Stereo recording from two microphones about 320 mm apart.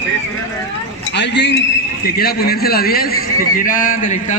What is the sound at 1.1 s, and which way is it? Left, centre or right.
A man's voice, left.